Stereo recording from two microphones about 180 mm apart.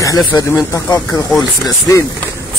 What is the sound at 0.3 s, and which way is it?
Speech, 20° left (ahead or behind).